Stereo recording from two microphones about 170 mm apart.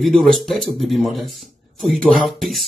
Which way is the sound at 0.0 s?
Centre (ahead or behind).